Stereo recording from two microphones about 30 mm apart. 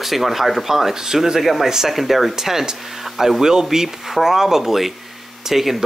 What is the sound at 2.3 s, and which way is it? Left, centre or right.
Speech, centre.